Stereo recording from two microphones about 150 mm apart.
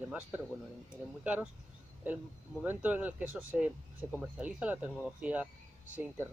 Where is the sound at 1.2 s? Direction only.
10° right (ahead or behind).